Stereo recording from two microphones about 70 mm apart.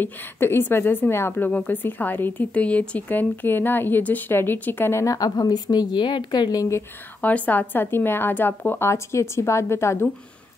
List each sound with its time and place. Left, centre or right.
0.0 s speech: left
5.0 s a woman's voice: left
7.2 s speech: left